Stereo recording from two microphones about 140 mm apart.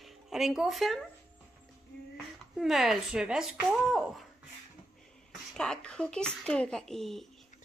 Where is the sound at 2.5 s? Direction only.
Centre (ahead or behind).